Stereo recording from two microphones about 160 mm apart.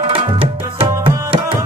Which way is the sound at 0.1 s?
35° right (ahead or behind).